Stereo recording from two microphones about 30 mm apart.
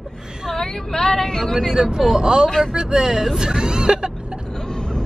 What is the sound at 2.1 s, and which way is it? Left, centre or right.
Speech, right.